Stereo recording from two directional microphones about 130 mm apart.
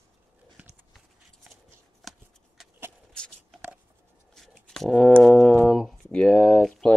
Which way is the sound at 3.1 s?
5° left (ahead or behind).